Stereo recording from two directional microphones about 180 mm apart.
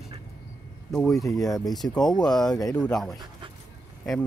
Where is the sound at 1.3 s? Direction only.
20° left (ahead or behind).